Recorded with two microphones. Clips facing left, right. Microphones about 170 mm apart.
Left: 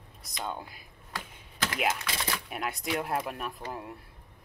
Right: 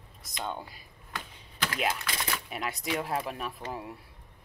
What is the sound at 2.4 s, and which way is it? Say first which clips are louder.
Speech: even; centre (ahead or behind).